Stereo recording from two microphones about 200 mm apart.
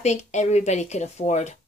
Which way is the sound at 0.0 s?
35° left (ahead or behind).